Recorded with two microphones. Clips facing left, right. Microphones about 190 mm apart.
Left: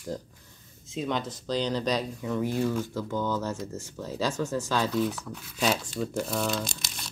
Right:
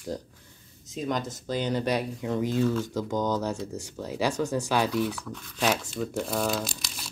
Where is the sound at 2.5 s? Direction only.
15° left (ahead or behind).